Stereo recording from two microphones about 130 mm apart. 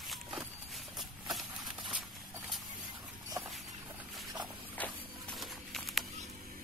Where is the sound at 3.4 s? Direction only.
25° right (ahead or behind).